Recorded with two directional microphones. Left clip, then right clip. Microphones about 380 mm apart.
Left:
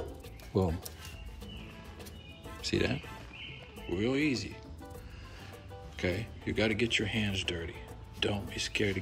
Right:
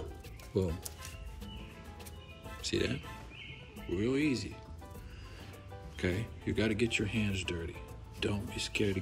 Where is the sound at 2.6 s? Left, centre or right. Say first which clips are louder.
Left 2 dB; centre.